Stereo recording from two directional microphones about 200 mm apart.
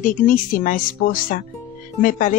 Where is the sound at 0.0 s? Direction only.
40° left (ahead or behind).